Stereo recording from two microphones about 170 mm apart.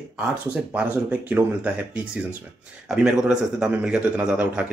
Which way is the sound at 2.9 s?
5° right (ahead or behind).